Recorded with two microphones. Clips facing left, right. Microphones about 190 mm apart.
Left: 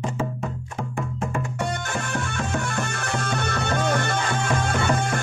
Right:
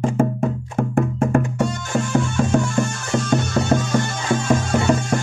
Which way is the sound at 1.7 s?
60° left (ahead or behind).